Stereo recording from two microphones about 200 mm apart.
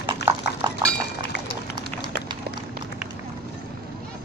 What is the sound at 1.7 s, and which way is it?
Run, 20° right (ahead or behind).